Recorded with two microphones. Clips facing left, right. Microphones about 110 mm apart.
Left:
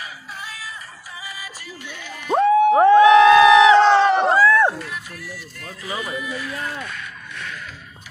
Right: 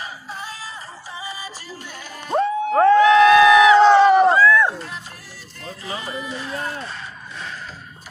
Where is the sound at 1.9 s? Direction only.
40° right (ahead or behind).